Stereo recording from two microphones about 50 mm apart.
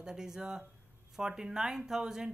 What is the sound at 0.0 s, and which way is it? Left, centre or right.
Speech, centre.